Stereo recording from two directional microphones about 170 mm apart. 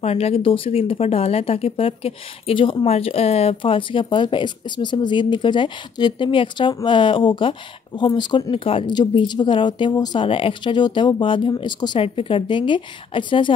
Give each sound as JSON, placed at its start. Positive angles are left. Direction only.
{"t": 0.0, "sound": "speech", "side_deg": 35}